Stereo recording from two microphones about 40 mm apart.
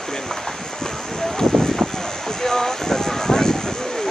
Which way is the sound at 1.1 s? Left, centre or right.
Centre.